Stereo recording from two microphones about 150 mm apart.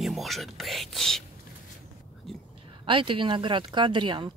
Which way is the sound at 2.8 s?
35° right (ahead or behind).